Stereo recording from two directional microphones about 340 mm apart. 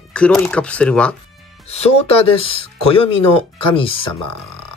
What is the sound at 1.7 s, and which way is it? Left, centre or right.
Speech, centre.